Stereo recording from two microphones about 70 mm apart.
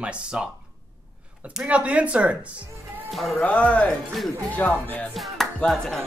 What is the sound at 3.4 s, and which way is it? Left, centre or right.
Speech, centre.